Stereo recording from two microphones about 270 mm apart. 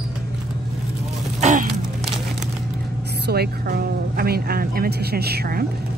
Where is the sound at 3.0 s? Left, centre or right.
Right.